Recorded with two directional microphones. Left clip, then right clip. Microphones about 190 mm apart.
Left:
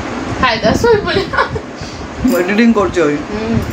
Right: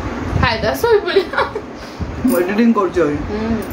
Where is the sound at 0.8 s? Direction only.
25° right (ahead or behind).